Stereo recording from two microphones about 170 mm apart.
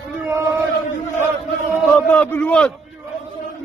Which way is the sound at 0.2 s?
15° right (ahead or behind).